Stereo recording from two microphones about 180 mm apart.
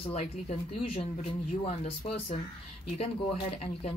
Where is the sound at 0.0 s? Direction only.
35° left (ahead or behind).